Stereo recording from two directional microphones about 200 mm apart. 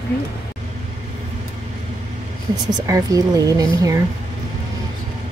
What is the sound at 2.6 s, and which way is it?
Speech, 15° right (ahead or behind).